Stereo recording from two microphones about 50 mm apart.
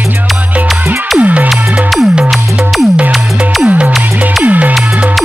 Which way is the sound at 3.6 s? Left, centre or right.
Right.